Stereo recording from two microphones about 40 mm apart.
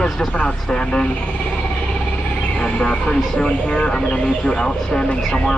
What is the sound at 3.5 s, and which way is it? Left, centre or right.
Speech, left.